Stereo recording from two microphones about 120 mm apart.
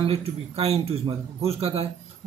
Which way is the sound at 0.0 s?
55° right (ahead or behind).